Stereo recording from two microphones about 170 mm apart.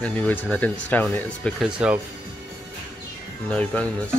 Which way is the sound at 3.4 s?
5° left (ahead or behind).